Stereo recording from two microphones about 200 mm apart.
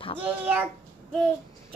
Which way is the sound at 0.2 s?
10° right (ahead or behind).